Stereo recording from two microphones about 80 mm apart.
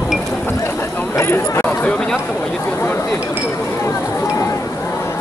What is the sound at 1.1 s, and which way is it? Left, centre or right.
Chatter, left.